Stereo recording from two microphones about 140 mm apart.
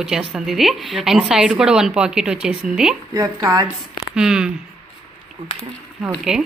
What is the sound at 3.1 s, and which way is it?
Speech, 25° right (ahead or behind).